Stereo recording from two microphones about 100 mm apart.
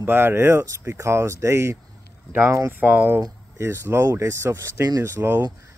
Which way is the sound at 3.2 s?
30° right (ahead or behind).